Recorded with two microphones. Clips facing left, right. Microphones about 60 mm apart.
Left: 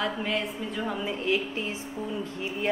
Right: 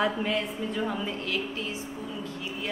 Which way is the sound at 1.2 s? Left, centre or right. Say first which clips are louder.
Left 4 dB; left.